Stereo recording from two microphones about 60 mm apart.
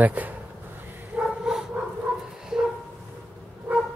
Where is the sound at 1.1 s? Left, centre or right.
Right.